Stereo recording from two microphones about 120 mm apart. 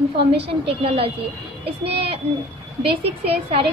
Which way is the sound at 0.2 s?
55° right (ahead or behind).